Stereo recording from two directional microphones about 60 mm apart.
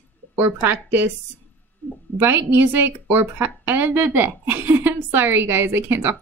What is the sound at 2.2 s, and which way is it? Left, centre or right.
A woman's voice, right.